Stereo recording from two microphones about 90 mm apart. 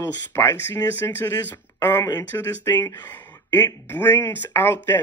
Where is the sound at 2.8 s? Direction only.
25° left (ahead or behind).